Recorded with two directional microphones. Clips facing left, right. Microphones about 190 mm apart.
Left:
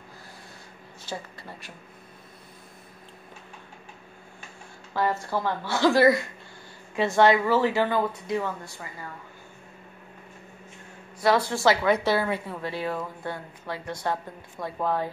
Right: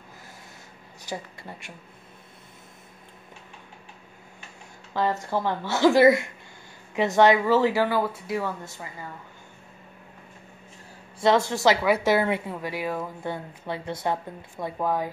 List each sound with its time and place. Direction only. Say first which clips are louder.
4.9 s a woman's voice: right 1 dB; 20° right (ahead or behind)
11.1 s a woman's voice: right 2 dB; 25° right (ahead or behind)